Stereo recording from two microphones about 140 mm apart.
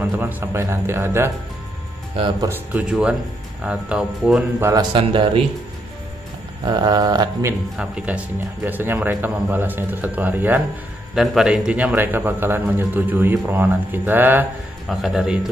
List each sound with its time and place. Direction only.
0.0 s a man's voice: 15° right (ahead or behind)
2.4 s a man's voice: 15° right (ahead or behind)
4.7 s a man's voice: 35° right (ahead or behind)
6.6 s a sound: 30° right (ahead or behind)
7.7 s a man's voice: 5° right (ahead or behind)
14.9 s speech: centre (ahead or behind)